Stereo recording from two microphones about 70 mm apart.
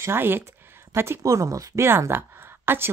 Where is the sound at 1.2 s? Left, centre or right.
Right.